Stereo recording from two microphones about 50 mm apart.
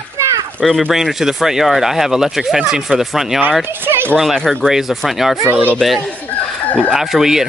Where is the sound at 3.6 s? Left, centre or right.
Right.